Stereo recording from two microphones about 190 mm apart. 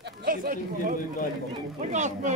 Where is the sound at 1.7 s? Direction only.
40° right (ahead or behind).